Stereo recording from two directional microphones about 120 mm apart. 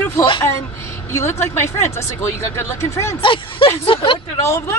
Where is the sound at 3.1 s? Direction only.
50° left (ahead or behind).